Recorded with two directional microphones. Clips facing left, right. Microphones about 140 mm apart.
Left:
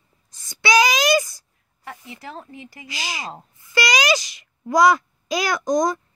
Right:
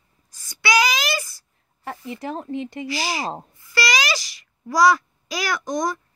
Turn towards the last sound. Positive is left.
turn(degrees=20)  # may be behind; listen again after turning